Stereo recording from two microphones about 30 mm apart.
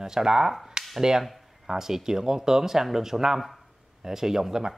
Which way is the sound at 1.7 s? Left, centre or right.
Centre.